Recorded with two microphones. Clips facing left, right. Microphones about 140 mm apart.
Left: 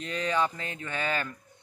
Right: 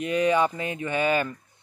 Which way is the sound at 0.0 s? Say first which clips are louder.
Right 7 dB; 15° right (ahead or behind).